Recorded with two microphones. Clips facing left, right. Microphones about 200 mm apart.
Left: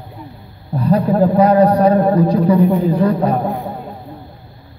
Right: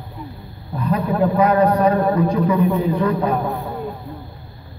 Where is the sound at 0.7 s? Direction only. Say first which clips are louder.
Left 6 dB; 35° left (ahead or behind).